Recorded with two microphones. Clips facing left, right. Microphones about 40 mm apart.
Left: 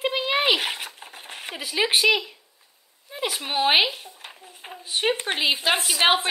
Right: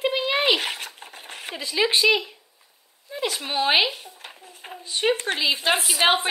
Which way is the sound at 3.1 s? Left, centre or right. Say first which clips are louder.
Right 1 dB; centre.